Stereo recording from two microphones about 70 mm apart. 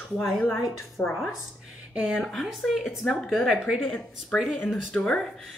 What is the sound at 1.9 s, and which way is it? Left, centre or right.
Speech, centre.